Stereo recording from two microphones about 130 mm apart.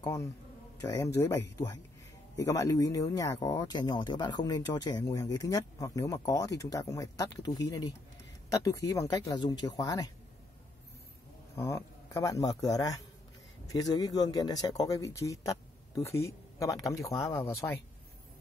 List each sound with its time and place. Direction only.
0.0 s speech: 25° left (ahead or behind)
2.3 s speech: 25° left (ahead or behind)
11.5 s speech: 20° left (ahead or behind)